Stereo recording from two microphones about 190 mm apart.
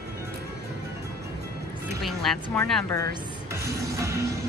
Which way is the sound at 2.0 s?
Centre (ahead or behind).